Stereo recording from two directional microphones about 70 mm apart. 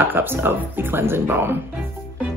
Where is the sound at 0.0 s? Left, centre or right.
Right.